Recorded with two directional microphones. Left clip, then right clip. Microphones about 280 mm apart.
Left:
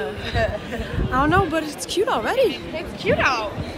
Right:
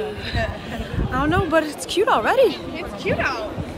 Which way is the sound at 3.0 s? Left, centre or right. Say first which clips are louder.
Left 3 dB; left.